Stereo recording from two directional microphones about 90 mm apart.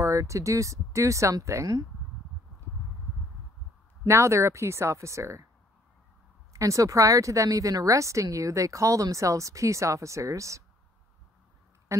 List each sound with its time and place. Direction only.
0.0 s a woman's voice: 35° right (ahead or behind)
4.0 s a woman's voice: 30° right (ahead or behind)
6.5 s a woman's voice: 40° right (ahead or behind)
11.9 s speech: 35° right (ahead or behind)